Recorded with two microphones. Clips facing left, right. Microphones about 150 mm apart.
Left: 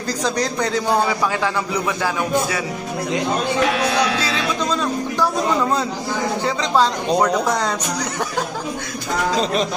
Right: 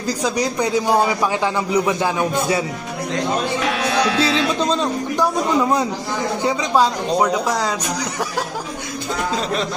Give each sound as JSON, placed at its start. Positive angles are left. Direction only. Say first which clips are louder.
{"t": 0.2, "sound": "a man's voice", "louder": "even", "side_deg": -10}
{"t": 3.6, "sound": "speech", "louder": "left 1 dB", "side_deg": 0}
{"t": 5.1, "sound": "a man's voice", "louder": "right 2 dB", "side_deg": -15}
{"t": 9.4, "sound": "speech", "louder": "left 2 dB", "side_deg": 20}